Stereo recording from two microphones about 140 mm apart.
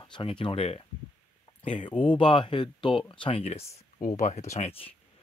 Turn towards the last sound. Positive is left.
turn(degrees=50)  # may be behind; listen again after turning